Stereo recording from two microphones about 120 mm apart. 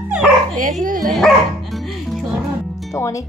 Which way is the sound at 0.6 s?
90° right.